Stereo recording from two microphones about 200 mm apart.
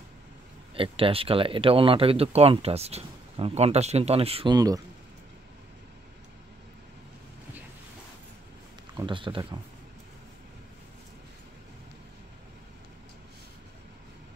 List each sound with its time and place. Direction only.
0.7 s speech: 25° right (ahead or behind)
8.9 s speech: 25° right (ahead or behind)